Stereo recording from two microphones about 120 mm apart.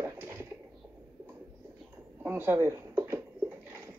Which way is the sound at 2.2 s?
15° right (ahead or behind).